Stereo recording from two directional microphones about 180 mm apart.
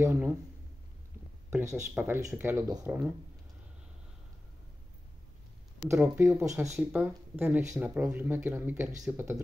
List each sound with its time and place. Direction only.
0.0 s speech: 10° right (ahead or behind)
1.5 s speech: 15° right (ahead or behind)
5.9 s speech: 15° right (ahead or behind)